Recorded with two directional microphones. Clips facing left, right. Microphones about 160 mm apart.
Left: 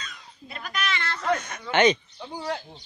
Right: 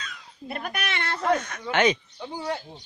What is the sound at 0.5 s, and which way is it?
Speech, 55° right (ahead or behind).